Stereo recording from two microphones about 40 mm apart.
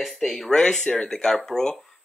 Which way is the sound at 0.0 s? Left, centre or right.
Centre.